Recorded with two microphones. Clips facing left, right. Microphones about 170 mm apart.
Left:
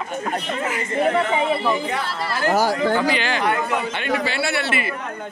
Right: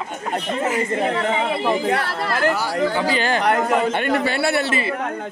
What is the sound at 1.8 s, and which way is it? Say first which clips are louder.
Speech: right 4 dB; 60° right (ahead or behind).